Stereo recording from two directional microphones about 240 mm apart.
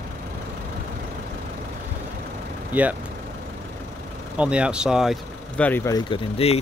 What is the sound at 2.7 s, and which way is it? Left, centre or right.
Speech, centre.